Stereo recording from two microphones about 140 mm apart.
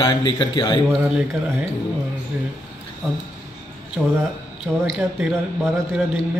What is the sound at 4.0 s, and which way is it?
Speech, centre (ahead or behind).